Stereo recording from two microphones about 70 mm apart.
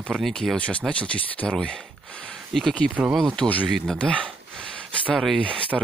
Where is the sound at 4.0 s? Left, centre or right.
Centre.